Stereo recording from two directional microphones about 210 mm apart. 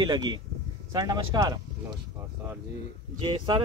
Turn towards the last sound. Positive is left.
turn(degrees=-20)  # may be behind; listen again after turning